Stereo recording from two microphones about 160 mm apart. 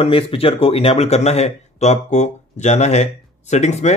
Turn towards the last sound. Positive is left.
turn(degrees=45)  # may be behind; listen again after turning